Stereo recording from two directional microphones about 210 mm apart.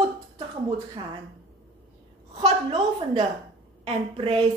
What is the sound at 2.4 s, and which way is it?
A woman's voice, 30° right (ahead or behind).